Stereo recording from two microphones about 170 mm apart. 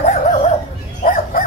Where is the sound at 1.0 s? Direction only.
55° left (ahead or behind).